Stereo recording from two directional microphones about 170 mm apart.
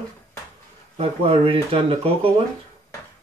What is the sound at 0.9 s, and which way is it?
Speech, 35° right (ahead or behind).